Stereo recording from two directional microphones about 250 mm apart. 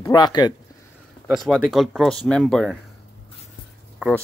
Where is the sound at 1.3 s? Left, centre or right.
Centre.